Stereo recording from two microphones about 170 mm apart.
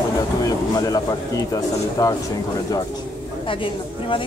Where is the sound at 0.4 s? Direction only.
20° left (ahead or behind).